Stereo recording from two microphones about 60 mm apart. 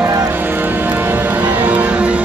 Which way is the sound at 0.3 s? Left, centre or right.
Right.